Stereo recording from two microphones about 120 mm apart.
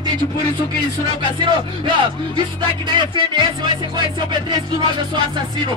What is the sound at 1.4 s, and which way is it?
Speech, 40° right (ahead or behind).